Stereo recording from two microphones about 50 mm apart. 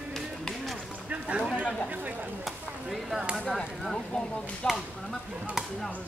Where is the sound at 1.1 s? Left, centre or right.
Right.